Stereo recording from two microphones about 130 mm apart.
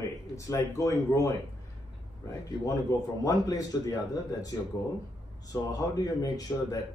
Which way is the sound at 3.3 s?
30° left (ahead or behind).